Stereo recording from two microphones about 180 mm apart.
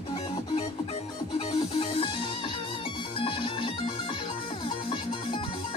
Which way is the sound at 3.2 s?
30° left (ahead or behind).